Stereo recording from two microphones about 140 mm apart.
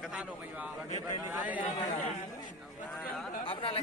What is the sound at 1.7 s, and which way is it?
Speech, 60° left (ahead or behind).